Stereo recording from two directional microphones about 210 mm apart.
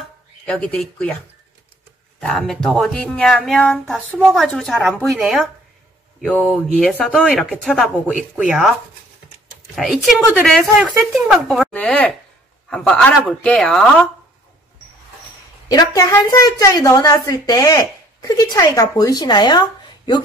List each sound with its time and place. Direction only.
0.5 s speech: 5° left (ahead or behind)
2.1 s speech: centre (ahead or behind)
9.8 s speech: centre (ahead or behind)
15.7 s a woman's voice: 15° left (ahead or behind)